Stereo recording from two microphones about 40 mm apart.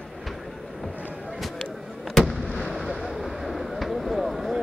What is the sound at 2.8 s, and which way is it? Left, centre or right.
Vehicle, centre.